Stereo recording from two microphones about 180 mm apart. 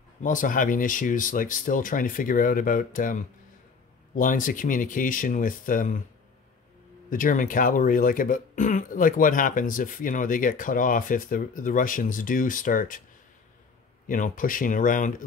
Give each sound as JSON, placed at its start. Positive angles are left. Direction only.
{"t": 0.2, "sound": "speech", "side_deg": 50}
{"t": 7.1, "sound": "speech", "side_deg": 50}
{"t": 14.0, "sound": "speech", "side_deg": 50}